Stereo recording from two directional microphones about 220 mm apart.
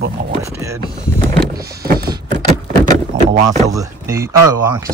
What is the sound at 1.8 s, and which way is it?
Power windows, 45° right (ahead or behind).